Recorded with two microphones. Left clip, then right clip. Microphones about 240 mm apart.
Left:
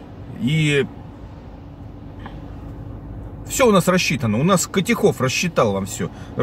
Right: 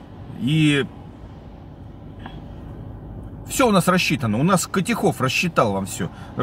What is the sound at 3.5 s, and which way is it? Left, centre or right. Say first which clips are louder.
Speech: left 2 dB; centre.